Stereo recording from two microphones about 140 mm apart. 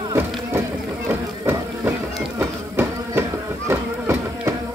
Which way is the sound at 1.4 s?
20° right (ahead or behind).